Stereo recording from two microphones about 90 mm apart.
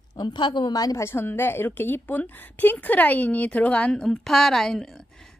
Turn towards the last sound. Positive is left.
turn(degrees=5)  # may be behind; listen again after turning